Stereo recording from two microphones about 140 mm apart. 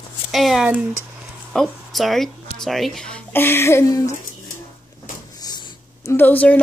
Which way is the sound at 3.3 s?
15° left (ahead or behind).